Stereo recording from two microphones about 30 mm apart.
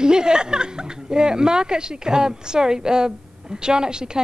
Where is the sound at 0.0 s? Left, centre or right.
Right.